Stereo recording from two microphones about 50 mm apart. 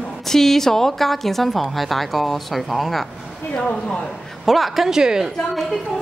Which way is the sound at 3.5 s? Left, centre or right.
Left.